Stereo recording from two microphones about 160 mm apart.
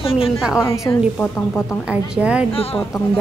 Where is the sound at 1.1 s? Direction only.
10° left (ahead or behind).